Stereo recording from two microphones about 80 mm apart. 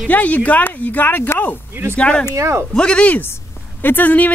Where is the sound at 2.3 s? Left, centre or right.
Right.